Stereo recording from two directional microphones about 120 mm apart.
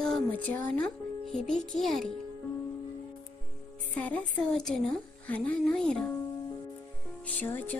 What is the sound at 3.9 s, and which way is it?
A woman's voice, 15° left (ahead or behind).